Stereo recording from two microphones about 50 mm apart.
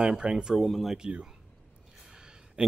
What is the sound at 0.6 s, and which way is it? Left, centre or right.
Speech, centre.